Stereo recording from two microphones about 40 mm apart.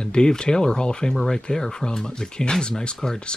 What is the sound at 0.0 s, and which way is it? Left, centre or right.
Speech, left.